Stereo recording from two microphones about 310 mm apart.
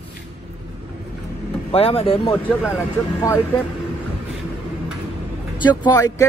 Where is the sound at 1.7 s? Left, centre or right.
Centre.